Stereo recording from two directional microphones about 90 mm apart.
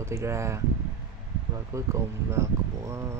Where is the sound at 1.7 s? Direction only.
35° right (ahead or behind).